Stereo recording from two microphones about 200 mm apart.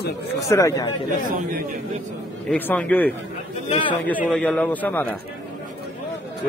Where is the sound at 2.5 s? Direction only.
5° left (ahead or behind).